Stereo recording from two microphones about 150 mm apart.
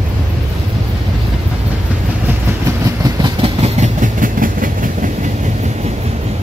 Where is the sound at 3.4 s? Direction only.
45° right (ahead or behind); by 5.1 s 65° right (ahead or behind).